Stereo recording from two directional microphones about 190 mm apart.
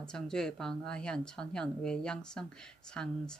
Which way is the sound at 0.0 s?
5° left (ahead or behind).